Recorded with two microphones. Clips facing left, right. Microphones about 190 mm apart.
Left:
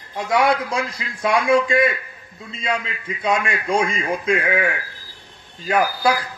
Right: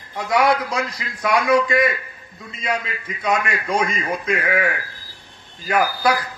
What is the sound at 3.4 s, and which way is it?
A man's voice, 25° left (ahead or behind).